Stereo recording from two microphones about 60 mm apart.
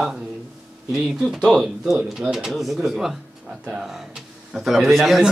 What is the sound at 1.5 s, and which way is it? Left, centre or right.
A man's voice, centre.